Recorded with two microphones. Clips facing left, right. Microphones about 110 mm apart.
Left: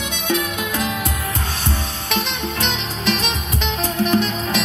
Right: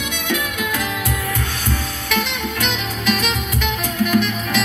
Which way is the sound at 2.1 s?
20° left (ahead or behind).